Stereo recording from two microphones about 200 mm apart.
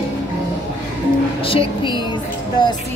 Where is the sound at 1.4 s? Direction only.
25° left (ahead or behind).